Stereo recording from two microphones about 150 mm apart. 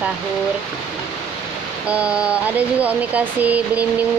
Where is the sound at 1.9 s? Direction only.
10° right (ahead or behind).